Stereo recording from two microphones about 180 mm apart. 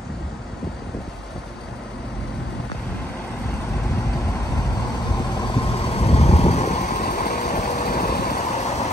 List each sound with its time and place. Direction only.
5.9 s vehicle: 35° left (ahead or behind)